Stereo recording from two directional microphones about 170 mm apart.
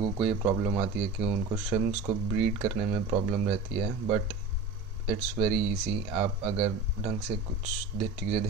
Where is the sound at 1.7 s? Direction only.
20° right (ahead or behind).